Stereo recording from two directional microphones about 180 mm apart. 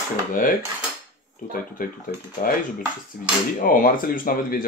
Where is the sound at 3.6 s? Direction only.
50° left (ahead or behind).